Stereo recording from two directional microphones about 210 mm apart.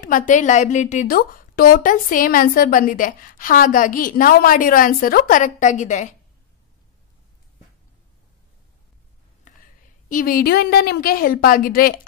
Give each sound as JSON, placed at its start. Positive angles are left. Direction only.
{"t": 0.0, "sound": "a woman's voice", "side_deg": 40}
{"t": 9.5, "sound": "a sound", "side_deg": 35}
{"t": 10.0, "sound": "a woman's voice", "side_deg": 40}